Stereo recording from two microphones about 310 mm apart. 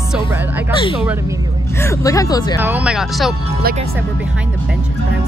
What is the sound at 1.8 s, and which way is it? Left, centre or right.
Speech, centre.